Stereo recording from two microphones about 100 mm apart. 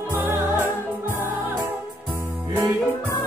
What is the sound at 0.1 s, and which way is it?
Music, 20° right (ahead or behind).